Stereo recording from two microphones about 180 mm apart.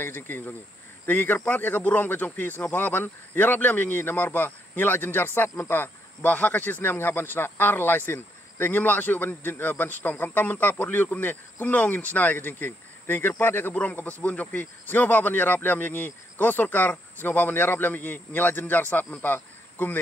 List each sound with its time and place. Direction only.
0.0 s a man's voice: 10° left (ahead or behind)